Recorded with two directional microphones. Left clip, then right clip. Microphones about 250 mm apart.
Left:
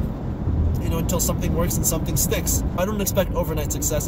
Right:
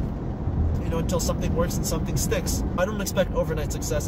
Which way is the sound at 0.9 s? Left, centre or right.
Centre.